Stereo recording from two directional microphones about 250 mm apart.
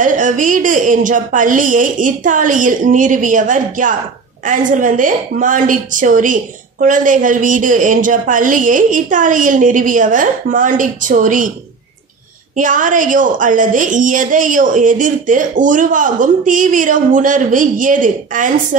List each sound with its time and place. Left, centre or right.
0.0 s a woman's voice: right
12.5 s a woman's voice: right